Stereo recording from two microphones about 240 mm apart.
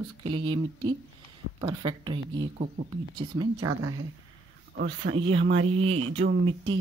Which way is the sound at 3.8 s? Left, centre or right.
Right.